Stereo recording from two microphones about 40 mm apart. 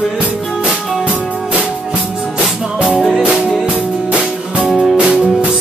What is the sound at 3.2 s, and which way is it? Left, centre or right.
Music, right.